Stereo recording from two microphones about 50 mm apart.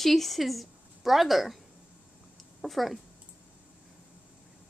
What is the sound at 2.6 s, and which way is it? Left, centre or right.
Speech, centre.